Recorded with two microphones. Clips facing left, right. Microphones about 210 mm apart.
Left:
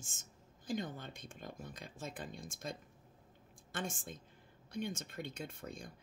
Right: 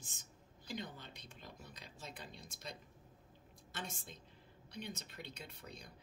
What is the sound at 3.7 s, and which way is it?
Speech, 50° left (ahead or behind).